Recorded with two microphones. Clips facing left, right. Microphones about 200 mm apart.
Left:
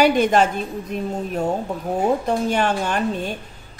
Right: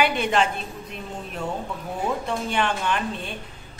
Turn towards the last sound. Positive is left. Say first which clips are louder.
# left 4 dB
turn(degrees=45)  # may be behind; listen again after turning